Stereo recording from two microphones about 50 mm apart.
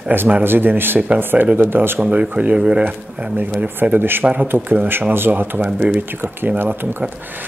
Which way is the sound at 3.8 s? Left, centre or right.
Right.